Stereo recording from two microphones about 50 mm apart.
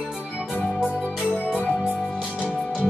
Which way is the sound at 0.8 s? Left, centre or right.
Left.